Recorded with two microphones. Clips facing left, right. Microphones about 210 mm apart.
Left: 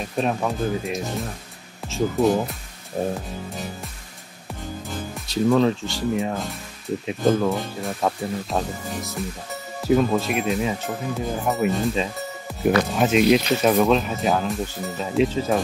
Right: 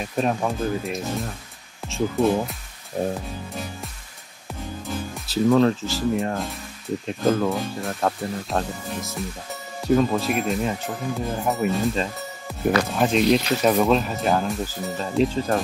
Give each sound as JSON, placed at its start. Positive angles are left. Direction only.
{"t": 0.0, "sound": "speech", "side_deg": 0}
{"t": 5.1, "sound": "speech", "side_deg": 0}